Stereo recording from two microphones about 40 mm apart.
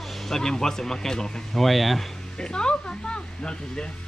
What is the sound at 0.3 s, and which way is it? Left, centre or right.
Speech, centre.